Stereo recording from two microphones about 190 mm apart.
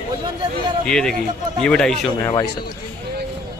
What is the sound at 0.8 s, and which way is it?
A man's voice, 5° left (ahead or behind).